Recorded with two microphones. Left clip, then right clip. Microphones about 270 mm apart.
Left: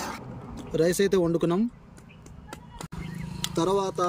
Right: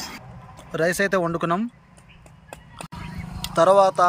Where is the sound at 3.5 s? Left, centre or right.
Centre.